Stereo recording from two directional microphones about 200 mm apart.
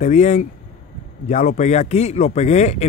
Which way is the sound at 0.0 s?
35° left (ahead or behind).